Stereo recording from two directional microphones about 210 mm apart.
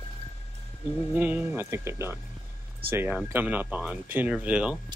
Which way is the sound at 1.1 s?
5° right (ahead or behind).